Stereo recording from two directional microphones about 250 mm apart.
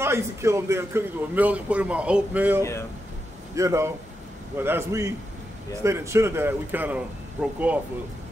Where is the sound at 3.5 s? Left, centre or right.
Centre.